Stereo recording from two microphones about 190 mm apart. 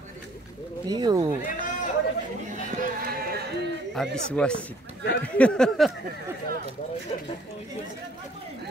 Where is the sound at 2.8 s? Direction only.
50° right (ahead or behind).